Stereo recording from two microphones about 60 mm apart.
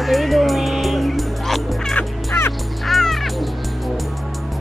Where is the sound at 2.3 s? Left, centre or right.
Left.